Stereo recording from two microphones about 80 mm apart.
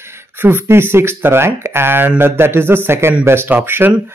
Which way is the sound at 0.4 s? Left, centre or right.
Right.